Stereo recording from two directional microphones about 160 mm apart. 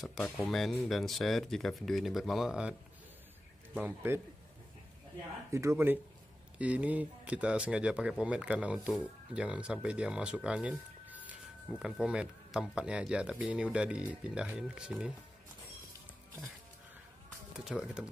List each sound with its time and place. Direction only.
0.0 s speech: 5° left (ahead or behind)
3.7 s speech: 10° right (ahead or behind)
5.5 s speech: 15° right (ahead or behind)
17.6 s speech: 5° right (ahead or behind)